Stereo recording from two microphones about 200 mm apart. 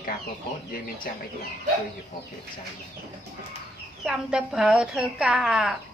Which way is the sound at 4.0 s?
5° right (ahead or behind).